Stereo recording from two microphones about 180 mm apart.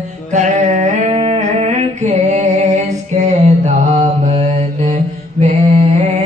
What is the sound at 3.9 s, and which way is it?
Mantra, 35° right (ahead or behind).